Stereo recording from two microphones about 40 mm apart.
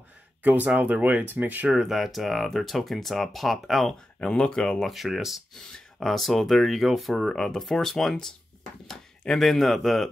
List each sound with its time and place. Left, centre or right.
0.4 s speech: right
1.8 s speech: centre
4.2 s speech: left
4.8 s speech: centre
5.5 s speech: centre
7.2 s speech: centre